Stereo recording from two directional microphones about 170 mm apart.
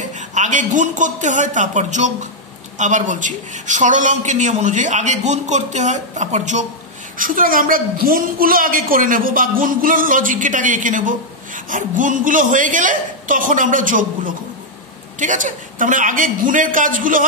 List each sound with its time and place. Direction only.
0.3 s a woman's voice: 45° right (ahead or behind)